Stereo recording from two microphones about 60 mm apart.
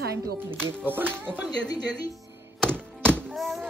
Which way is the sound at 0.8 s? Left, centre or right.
Right.